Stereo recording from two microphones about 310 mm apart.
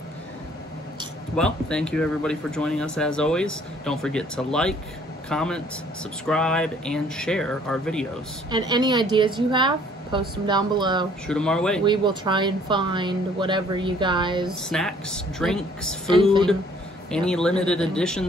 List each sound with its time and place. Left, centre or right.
1.3 s speech: centre
8.5 s speech: centre
11.2 s speech: centre
11.8 s speech: centre
14.7 s speech: centre
17.1 s speech: centre